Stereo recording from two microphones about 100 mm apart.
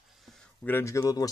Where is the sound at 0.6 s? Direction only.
25° left (ahead or behind).